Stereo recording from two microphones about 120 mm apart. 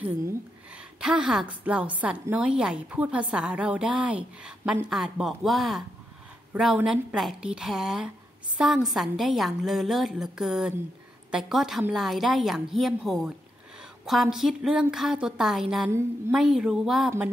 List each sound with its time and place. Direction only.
1.0 s a woman's voice: 5° right (ahead or behind)